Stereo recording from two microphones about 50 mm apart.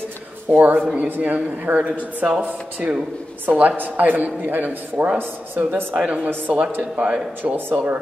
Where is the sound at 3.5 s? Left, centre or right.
Right.